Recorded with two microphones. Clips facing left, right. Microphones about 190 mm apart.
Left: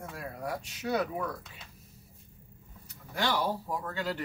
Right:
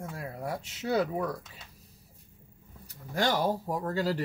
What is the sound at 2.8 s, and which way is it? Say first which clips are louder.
Speech: right 3 dB; 45° right (ahead or behind).